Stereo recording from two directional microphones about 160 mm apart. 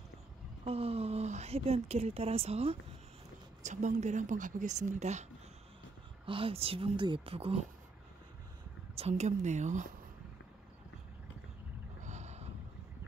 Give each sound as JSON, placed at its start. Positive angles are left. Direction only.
{"t": 0.7, "sound": "speech", "side_deg": -40}
{"t": 6.2, "sound": "speech", "side_deg": -35}
{"t": 8.9, "sound": "speech", "side_deg": -40}
{"t": 12.0, "sound": "boat", "side_deg": -45}